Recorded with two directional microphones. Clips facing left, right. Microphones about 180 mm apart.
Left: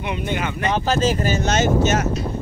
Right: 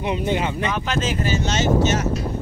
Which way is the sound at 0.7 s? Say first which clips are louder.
Left 4 dB; 35° left (ahead or behind).